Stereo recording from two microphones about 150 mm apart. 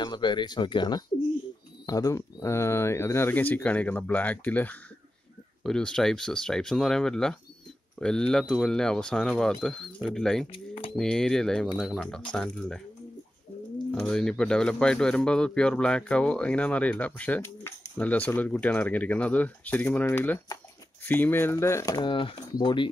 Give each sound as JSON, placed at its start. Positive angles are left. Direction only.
{"t": 0.0, "sound": "speech", "side_deg": 30}
{"t": 13.9, "sound": "speech", "side_deg": 5}